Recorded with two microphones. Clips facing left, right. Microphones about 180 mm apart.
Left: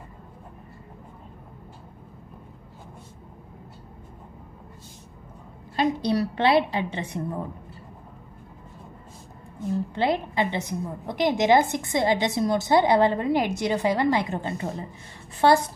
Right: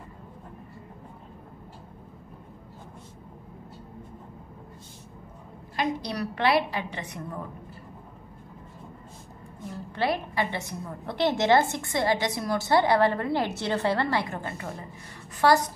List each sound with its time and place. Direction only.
5.8 s a woman's voice: 25° left (ahead or behind)
9.9 s a woman's voice: 20° left (ahead or behind)